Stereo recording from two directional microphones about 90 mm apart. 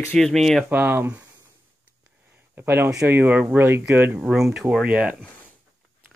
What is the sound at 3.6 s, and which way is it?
Speech, 30° right (ahead or behind).